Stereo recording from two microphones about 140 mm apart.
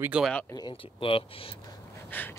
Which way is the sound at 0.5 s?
35° left (ahead or behind).